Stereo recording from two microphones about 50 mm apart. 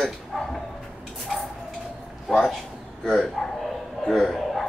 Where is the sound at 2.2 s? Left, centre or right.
Centre.